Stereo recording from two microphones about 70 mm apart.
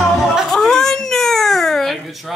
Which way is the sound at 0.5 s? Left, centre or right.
Centre.